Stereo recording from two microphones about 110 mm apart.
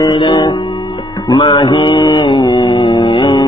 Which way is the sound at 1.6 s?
50° left (ahead or behind).